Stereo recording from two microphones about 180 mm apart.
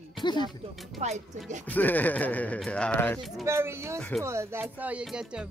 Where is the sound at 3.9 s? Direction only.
5° left (ahead or behind).